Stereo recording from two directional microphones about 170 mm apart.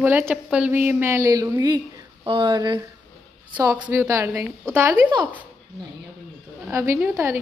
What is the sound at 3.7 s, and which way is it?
Speech, 15° right (ahead or behind).